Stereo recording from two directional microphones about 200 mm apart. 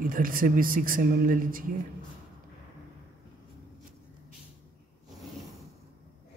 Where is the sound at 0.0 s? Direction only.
45° right (ahead or behind).